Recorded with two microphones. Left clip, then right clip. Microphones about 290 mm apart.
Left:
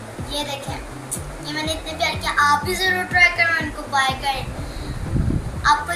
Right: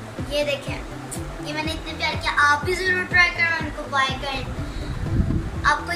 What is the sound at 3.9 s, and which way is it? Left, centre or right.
Speech, centre.